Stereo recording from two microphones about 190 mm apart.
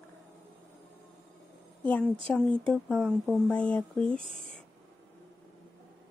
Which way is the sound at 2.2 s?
5° left (ahead or behind).